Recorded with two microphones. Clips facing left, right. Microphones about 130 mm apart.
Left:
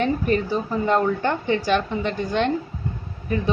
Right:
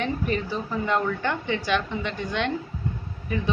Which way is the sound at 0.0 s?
40° left (ahead or behind).